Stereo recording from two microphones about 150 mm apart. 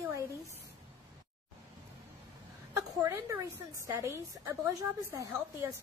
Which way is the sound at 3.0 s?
20° right (ahead or behind).